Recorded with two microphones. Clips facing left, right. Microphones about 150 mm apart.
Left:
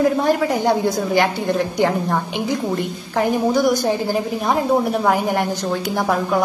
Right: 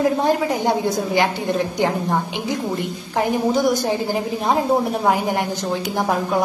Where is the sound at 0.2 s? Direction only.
20° right (ahead or behind).